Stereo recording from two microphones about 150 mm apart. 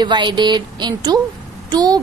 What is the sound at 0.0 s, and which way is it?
A woman's voice, 30° right (ahead or behind).